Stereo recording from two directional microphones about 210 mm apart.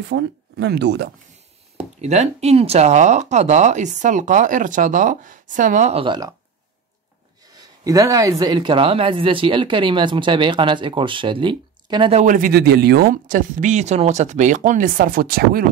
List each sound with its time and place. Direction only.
0.1 s speech: 55° right (ahead or behind)
2.0 s speech: 30° right (ahead or behind)
7.5 s speech: 20° right (ahead or behind); by 15.6 s 45° right (ahead or behind)